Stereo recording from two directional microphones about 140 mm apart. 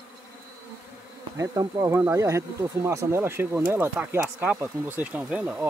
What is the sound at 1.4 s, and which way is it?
Speech, 25° right (ahead or behind).